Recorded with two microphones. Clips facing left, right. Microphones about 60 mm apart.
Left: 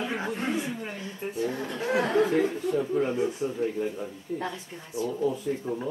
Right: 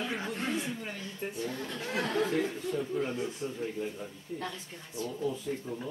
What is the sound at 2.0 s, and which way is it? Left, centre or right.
Speech, centre.